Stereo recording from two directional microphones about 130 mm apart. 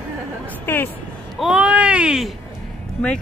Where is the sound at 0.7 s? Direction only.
15° left (ahead or behind).